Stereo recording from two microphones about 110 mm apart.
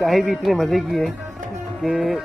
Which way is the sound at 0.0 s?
Centre (ahead or behind).